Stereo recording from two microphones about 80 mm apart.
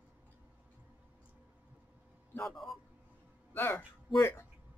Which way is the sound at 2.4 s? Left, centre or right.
Centre.